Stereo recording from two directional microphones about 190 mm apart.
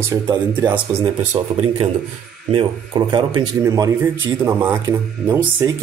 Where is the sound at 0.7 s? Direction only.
15° right (ahead or behind).